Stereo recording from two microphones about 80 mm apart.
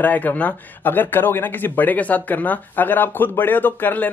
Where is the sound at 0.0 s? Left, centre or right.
Left.